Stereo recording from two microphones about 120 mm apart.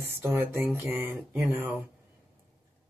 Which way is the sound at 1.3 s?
15° right (ahead or behind).